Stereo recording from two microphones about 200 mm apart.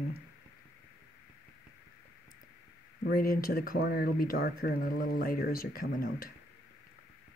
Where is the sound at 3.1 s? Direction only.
45° left (ahead or behind).